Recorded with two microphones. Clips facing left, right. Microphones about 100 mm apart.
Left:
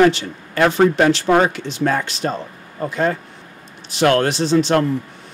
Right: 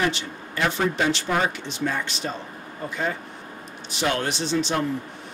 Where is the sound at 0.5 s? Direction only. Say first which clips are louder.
Left 9 dB; 60° left (ahead or behind).